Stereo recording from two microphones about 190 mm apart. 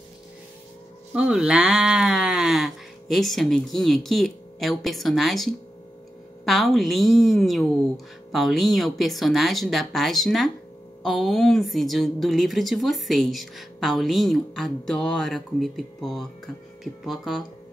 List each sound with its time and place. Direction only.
1.1 s a woman's voice: 5° right (ahead or behind)